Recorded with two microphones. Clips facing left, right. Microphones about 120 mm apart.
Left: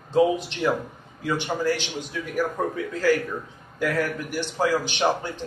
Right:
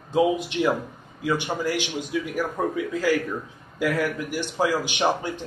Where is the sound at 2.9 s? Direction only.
10° right (ahead or behind).